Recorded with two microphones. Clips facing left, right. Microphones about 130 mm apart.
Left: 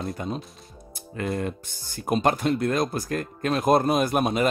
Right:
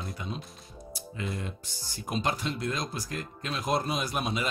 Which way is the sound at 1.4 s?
55° left (ahead or behind).